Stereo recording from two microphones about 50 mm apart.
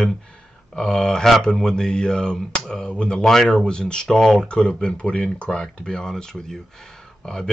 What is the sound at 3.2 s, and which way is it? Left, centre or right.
Speech, centre.